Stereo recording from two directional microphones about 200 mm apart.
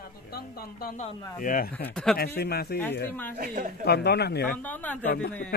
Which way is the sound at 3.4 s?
45° right (ahead or behind).